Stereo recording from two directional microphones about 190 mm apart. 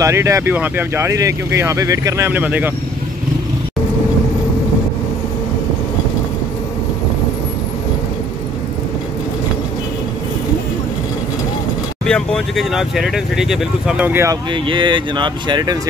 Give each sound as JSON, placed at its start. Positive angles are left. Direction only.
{"t": 0.0, "sound": "speech", "side_deg": -15}
{"t": 12.1, "sound": "speech", "side_deg": 0}
{"t": 14.5, "sound": "speech", "side_deg": -25}